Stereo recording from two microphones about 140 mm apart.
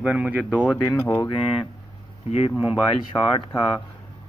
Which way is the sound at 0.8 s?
15° left (ahead or behind).